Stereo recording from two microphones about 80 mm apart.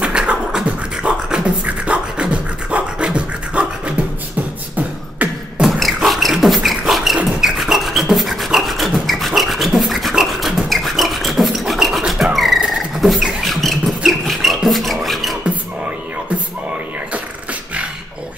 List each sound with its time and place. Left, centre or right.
0.0 s beatboxing: centre
5.2 s beatboxing: centre
5.6 s beatboxing: centre
7.2 s a sound: centre
12.2 s dog: centre
12.7 s beatboxing: centre